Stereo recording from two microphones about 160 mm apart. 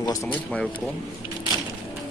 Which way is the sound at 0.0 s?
20° left (ahead or behind).